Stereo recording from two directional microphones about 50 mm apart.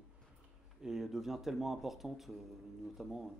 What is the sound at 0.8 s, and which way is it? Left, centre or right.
Speech, centre.